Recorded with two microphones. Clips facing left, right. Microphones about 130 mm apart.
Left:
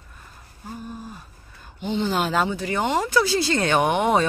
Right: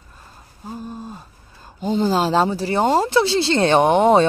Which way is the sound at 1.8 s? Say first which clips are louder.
Right 5 dB; 40° right (ahead or behind).